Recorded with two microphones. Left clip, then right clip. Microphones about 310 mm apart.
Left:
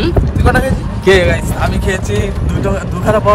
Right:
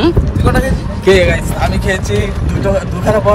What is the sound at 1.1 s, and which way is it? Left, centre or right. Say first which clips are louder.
Speech: even; centre.